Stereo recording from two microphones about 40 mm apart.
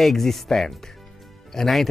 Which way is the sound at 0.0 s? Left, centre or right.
Centre.